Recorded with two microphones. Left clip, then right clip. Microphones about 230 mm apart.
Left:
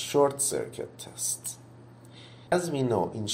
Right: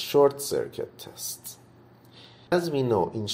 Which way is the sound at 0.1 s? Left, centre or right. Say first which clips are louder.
Right 4 dB; right.